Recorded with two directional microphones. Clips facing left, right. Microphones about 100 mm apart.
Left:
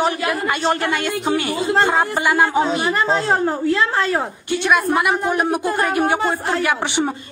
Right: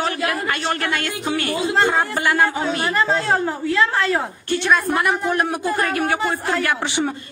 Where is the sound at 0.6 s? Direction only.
30° left (ahead or behind).